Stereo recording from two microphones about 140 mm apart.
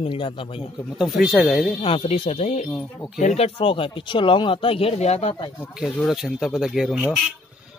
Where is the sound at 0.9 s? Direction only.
Centre (ahead or behind).